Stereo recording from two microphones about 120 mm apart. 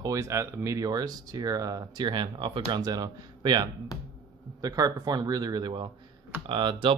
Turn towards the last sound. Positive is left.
turn(degrees=-45)  # may be behind; listen again after turning